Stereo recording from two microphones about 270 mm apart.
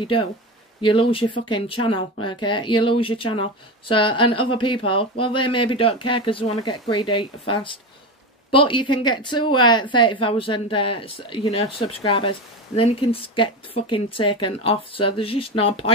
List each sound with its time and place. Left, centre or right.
0.0 s a woman's voice: centre